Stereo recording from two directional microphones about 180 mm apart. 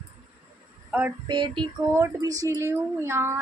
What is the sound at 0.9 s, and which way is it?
Speech, 5° right (ahead or behind).